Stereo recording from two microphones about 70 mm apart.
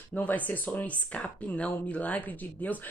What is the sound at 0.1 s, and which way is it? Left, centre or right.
Speech, left.